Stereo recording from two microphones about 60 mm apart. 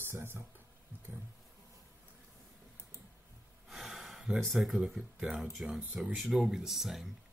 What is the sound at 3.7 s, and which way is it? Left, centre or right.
Gasp, centre.